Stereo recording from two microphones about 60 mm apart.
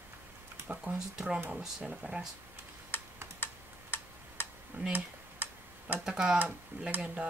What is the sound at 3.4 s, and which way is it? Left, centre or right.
Typing, left.